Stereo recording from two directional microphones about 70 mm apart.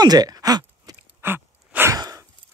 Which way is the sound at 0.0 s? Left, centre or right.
Right.